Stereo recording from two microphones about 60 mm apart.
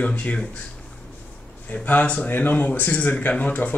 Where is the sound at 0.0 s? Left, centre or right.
Left.